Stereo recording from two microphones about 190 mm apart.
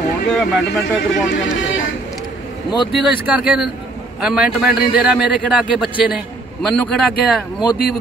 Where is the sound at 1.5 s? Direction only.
90° left.